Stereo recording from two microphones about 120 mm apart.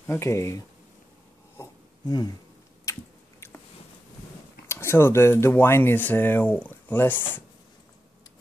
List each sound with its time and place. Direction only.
0.0 s speech: 20° left (ahead or behind)
1.6 s a sound: 35° left (ahead or behind)
2.8 s squish: 25° left (ahead or behind)
4.6 s speech: 20° left (ahead or behind)